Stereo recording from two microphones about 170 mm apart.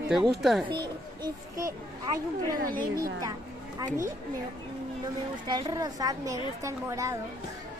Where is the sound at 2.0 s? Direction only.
20° right (ahead or behind).